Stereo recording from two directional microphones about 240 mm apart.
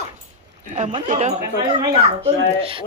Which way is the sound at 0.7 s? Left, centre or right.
Right.